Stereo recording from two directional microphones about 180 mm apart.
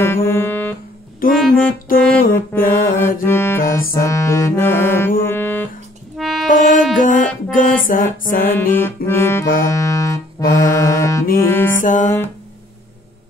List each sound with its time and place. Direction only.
0.0 s music: 10° left (ahead or behind)
1.5 s music: 50° left (ahead or behind)
2.3 s mantra: 15° left (ahead or behind)
3.3 s music: 15° left (ahead or behind)
6.5 s wind instrument: 45° left (ahead or behind)
7.5 s music: 50° left (ahead or behind)
8.5 s music: 10° left (ahead or behind)
11.8 s music: 45° left (ahead or behind)